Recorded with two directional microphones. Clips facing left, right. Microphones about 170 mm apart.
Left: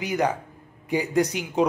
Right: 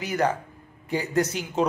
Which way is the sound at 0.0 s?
15° left (ahead or behind).